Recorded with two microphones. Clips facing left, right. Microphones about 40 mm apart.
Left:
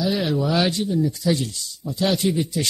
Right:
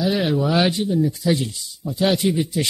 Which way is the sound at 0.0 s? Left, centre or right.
Centre.